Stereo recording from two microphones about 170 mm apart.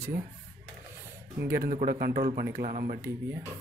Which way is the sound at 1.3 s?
65° right (ahead or behind).